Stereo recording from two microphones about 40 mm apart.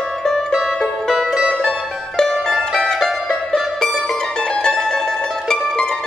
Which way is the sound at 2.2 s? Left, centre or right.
Centre.